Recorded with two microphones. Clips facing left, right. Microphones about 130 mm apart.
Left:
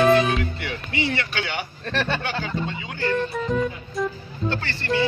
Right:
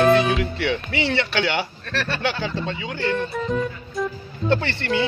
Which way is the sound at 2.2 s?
80° right.